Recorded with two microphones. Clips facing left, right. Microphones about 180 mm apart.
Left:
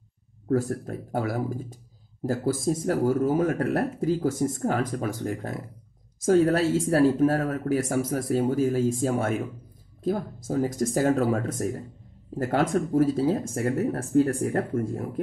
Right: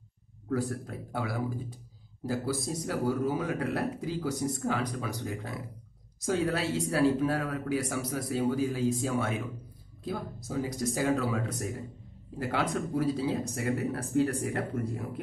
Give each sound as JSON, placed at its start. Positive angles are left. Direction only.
{"t": 0.5, "sound": "speech", "side_deg": 45}